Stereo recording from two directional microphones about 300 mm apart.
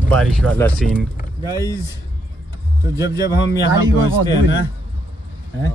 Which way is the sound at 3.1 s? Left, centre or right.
Left.